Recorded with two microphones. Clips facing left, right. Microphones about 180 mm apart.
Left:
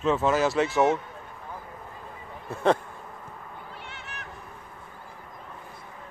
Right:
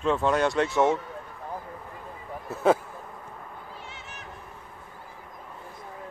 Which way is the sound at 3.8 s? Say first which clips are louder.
Left 1 dB; 60° left (ahead or behind).